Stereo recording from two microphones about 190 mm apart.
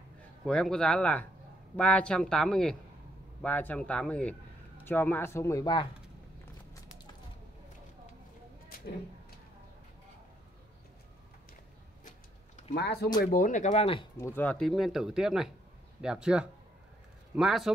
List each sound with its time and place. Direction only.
0.5 s a man's voice: 5° left (ahead or behind); by 5.9 s 20° left (ahead or behind)
12.7 s speech: 60° left (ahead or behind); by 14.0 s 30° left (ahead or behind)
14.1 s speech: 15° left (ahead or behind)